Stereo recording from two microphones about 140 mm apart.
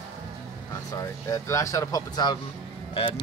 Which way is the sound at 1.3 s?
25° left (ahead or behind).